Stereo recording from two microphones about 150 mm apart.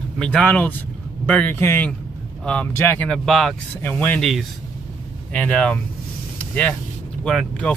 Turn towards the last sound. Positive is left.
turn(degrees=5)  # may be behind; listen again after turning